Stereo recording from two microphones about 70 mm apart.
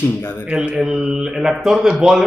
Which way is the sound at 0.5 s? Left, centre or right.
Centre.